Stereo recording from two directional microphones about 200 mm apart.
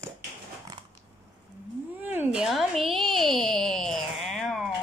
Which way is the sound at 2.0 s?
5° right (ahead or behind).